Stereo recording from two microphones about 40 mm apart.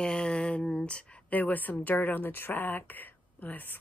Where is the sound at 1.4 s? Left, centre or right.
Left.